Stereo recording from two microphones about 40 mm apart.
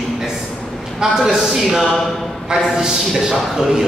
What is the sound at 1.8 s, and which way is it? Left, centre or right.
Speech, centre.